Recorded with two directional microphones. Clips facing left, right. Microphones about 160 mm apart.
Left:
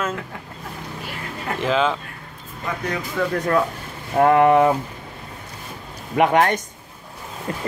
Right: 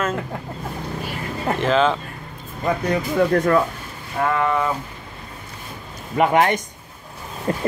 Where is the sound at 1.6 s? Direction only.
5° left (ahead or behind).